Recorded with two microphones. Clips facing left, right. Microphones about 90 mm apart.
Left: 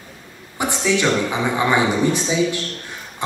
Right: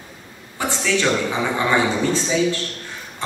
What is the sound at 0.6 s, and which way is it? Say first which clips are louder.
A man's voice: left 2 dB; 15° left (ahead or behind).